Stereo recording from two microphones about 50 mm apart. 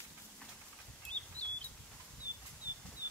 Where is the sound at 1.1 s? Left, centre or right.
Left.